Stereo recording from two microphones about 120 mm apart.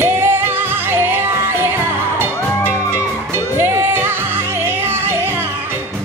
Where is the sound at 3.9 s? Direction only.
20° right (ahead or behind).